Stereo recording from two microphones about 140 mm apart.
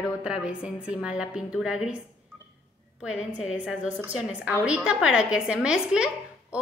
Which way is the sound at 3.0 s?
5° right (ahead or behind).